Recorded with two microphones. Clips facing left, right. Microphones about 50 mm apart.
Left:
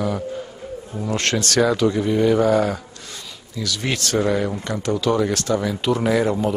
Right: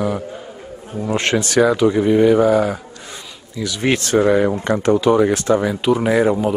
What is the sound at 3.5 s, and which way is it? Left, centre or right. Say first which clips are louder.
Speech: right 6 dB; centre.